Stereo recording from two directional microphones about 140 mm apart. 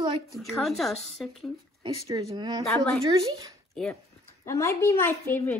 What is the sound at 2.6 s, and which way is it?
Speech, 5° left (ahead or behind).